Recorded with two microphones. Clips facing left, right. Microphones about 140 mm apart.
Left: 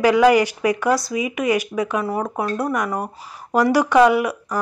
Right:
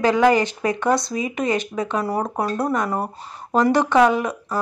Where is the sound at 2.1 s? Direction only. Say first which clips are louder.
Even; 10° right (ahead or behind).